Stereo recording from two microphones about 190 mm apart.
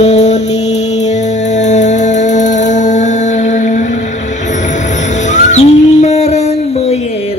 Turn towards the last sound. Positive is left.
turn(degrees=35)  # may be behind; listen again after turning